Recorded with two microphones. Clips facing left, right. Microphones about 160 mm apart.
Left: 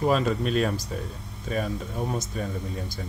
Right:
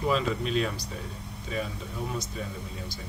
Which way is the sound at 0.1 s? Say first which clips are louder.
Left 3 dB; 45° left (ahead or behind).